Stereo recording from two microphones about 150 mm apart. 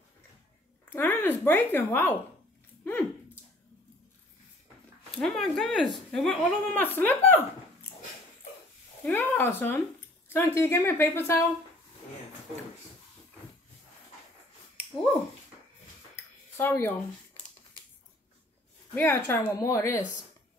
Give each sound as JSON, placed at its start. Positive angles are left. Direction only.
{"t": 0.9, "sound": "speech", "side_deg": 15}
{"t": 5.2, "sound": "speech", "side_deg": 0}
{"t": 6.8, "sound": "speech", "side_deg": 10}
{"t": 9.0, "sound": "speech", "side_deg": 10}
{"t": 16.5, "sound": "speech", "side_deg": 15}
{"t": 18.9, "sound": "speech", "side_deg": 15}